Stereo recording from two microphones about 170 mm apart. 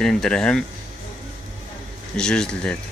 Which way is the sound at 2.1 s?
5° left (ahead or behind).